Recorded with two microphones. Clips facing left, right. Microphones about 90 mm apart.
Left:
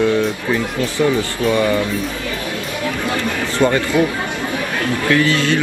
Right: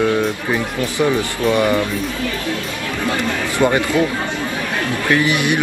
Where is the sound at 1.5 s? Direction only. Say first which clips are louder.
Right 1 dB; 15° right (ahead or behind).